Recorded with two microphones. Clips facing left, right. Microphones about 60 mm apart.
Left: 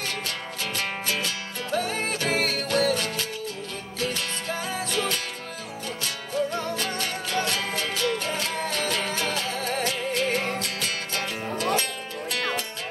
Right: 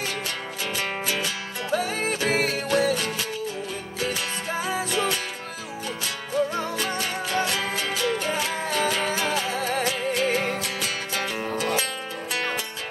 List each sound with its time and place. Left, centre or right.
0.7 s music: centre